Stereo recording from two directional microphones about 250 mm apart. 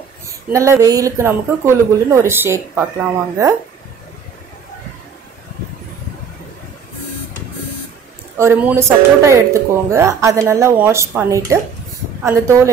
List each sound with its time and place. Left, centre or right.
0.5 s speech: centre
8.4 s speech: centre